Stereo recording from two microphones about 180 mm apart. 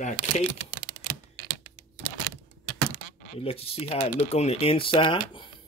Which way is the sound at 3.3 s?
30° left (ahead or behind).